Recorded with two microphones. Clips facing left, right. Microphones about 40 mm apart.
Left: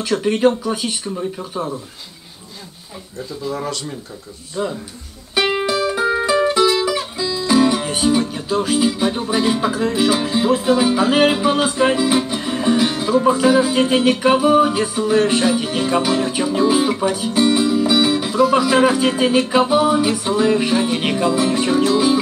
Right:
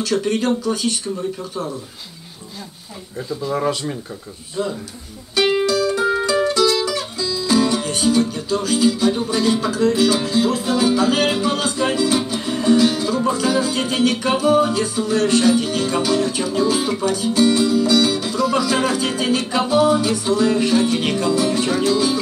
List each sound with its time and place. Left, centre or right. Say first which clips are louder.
0.1 s music: left 4 dB; centre
3.2 s speech: right 3 dB; centre
4.6 s music: left 1 dB; centre